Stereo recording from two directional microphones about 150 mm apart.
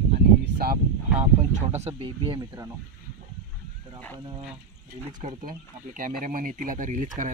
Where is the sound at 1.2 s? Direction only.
50° right (ahead or behind).